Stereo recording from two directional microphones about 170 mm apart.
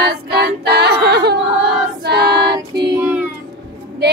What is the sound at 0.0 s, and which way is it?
A capella, 70° right (ahead or behind).